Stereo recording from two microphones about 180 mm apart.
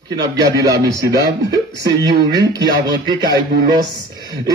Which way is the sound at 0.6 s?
20° right (ahead or behind).